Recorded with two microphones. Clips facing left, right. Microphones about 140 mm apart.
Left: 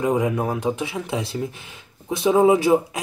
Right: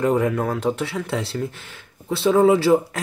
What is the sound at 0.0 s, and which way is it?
Speech, 10° left (ahead or behind).